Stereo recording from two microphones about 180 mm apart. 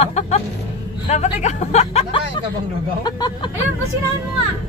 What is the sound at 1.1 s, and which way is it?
Speech, 40° left (ahead or behind).